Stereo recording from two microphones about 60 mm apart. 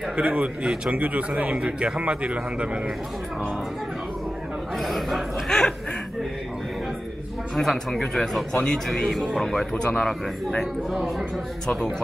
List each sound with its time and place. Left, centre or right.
0.1 s a man's voice: right
4.7 s a sound: centre
7.5 s a man's voice: centre
10.9 s speech: centre
11.6 s a man's voice: centre